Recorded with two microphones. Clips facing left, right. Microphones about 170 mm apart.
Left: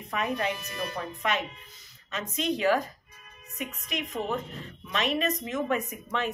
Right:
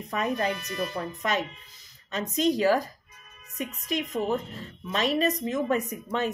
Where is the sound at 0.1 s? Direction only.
40° right (ahead or behind).